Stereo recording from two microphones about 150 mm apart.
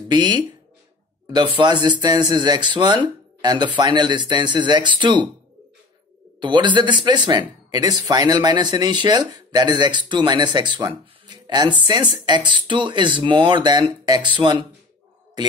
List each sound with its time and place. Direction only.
0.1 s speech: 30° right (ahead or behind)
6.4 s speech: 30° right (ahead or behind)